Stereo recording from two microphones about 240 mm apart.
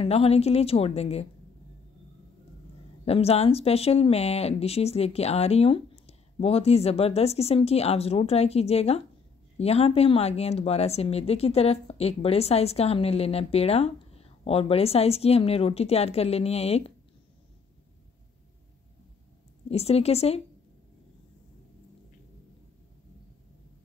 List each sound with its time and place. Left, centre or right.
0.0 s speech: left
3.1 s speech: left
19.7 s speech: left